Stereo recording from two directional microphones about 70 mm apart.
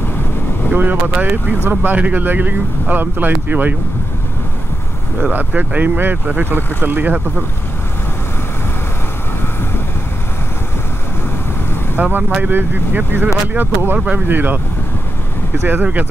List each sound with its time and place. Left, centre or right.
0.7 s speech: right
5.3 s speech: right
12.0 s speech: right
15.6 s speech: right